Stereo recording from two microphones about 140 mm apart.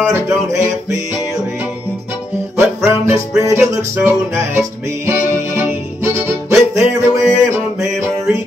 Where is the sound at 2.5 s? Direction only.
20° right (ahead or behind).